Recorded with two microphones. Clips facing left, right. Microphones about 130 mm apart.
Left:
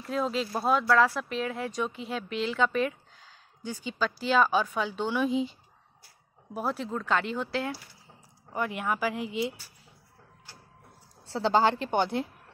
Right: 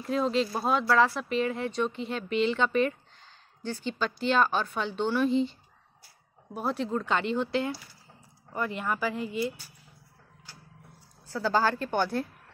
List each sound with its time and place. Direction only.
0.0 s speech: centre (ahead or behind)
9.2 s speech: 90° left
11.2 s a woman's voice: 25° left (ahead or behind)